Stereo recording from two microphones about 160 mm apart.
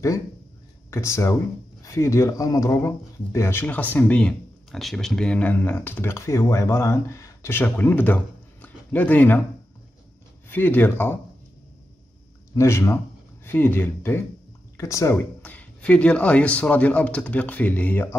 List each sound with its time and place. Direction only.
0.8 s speech: 15° left (ahead or behind)
10.5 s speech: 10° left (ahead or behind)
12.5 s speech: 15° left (ahead or behind)